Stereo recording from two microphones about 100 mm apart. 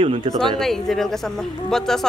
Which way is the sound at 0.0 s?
65° right (ahead or behind).